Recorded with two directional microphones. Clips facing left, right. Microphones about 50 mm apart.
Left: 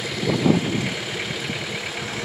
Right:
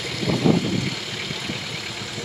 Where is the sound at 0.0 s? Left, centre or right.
Centre.